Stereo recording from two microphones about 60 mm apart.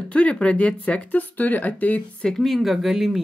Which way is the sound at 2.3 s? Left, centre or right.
Centre.